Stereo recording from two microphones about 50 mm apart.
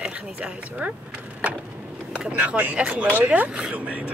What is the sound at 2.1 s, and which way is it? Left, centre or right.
Speech, right.